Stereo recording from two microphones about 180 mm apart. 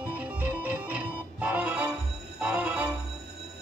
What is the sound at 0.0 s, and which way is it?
Music, 5° right (ahead or behind).